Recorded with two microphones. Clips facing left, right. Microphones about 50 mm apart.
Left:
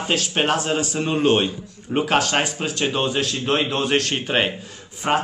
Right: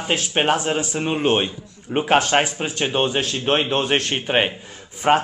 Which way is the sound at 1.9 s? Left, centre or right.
Right.